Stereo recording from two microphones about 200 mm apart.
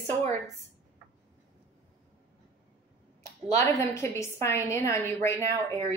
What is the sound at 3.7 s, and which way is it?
A woman's voice, 15° left (ahead or behind).